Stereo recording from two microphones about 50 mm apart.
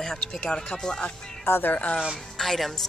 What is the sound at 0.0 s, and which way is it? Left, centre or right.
Speech, centre.